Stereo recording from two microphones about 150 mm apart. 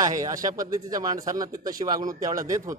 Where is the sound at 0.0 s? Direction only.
25° right (ahead or behind).